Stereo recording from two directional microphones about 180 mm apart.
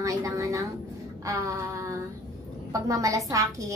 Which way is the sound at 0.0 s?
20° right (ahead or behind).